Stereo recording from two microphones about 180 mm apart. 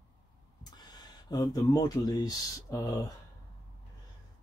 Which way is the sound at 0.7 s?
25° left (ahead or behind).